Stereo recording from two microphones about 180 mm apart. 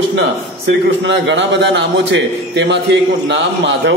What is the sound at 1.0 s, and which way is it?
A man's voice, 85° right.